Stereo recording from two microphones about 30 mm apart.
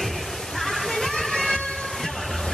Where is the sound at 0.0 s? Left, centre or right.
Centre.